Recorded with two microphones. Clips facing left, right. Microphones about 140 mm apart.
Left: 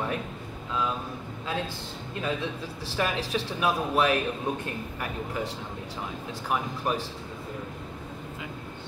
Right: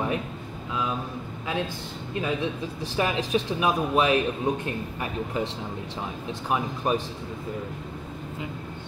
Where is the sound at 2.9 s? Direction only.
20° right (ahead or behind).